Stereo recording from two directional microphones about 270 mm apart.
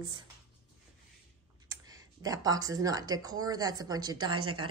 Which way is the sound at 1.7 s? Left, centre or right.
Centre.